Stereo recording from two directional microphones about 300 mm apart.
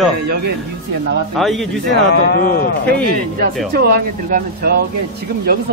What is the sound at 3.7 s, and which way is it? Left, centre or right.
Speech, right.